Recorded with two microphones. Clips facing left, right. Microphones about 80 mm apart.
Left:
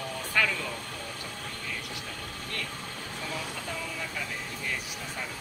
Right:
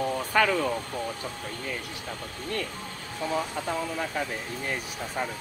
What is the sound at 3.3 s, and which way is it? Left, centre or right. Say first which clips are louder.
Speech: right 9 dB; right.